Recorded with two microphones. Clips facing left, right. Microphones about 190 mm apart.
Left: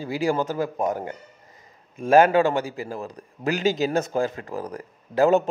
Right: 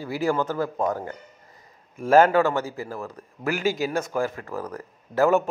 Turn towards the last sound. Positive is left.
turn(degrees=20)  # may be behind; listen again after turning